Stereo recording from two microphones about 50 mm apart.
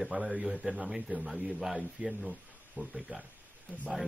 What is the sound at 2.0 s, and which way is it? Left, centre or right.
Speech, centre.